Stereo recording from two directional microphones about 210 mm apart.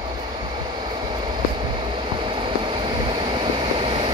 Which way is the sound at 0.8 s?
20° right (ahead or behind).